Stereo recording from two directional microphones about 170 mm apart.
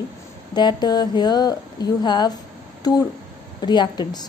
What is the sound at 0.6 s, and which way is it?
A woman's voice, 25° left (ahead or behind).